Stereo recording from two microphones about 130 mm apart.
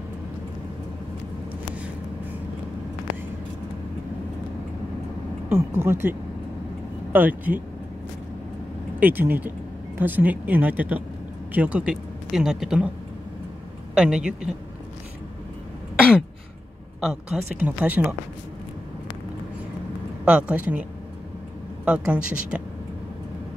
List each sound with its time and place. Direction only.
5.5 s speech: 15° right (ahead or behind)
9.0 s speech: 15° right (ahead or behind)
13.9 s speech: 5° right (ahead or behind)
17.0 s speech: 5° right (ahead or behind)
20.2 s speech: 10° right (ahead or behind)
21.8 s speech: 10° right (ahead or behind)